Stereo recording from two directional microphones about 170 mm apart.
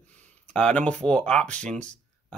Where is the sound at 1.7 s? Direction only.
5° left (ahead or behind).